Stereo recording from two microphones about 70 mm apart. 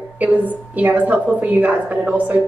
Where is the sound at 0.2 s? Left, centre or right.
Right.